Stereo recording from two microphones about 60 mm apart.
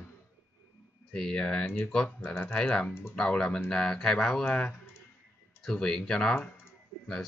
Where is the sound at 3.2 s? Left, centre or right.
Centre.